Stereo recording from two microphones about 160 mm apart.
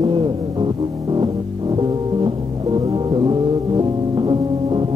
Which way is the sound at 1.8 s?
30° right (ahead or behind).